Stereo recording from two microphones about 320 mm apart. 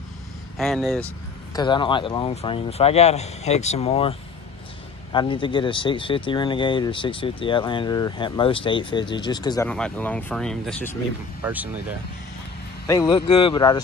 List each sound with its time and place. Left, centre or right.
0.6 s speech: centre
1.5 s speech: centre
12.8 s speech: centre